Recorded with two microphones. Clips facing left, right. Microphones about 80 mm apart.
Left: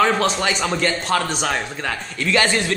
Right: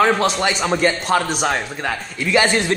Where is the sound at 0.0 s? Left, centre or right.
Centre.